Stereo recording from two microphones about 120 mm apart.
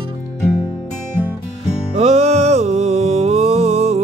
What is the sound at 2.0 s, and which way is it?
Music, 60° right (ahead or behind).